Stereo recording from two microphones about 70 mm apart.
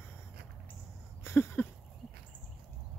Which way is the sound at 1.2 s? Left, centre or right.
Left.